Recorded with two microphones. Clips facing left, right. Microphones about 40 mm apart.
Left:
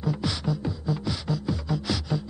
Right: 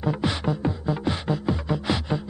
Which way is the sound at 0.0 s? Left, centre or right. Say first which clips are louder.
Right 3 dB; right.